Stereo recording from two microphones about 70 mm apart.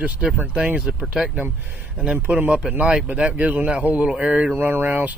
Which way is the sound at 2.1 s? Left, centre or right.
Right.